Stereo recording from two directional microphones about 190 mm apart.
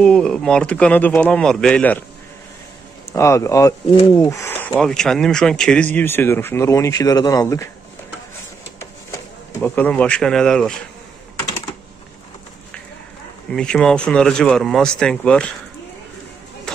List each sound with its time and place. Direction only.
0.0 s speech: 5° left (ahead or behind)
3.1 s speech: 15° left (ahead or behind)
9.1 s speech: 10° left (ahead or behind)
13.5 s speech: 5° left (ahead or behind)
16.7 s music: 5° left (ahead or behind)